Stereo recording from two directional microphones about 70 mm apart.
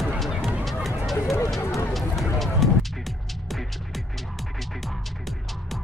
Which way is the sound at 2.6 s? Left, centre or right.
Centre.